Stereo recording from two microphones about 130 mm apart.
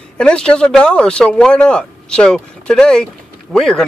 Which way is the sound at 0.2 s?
5° left (ahead or behind).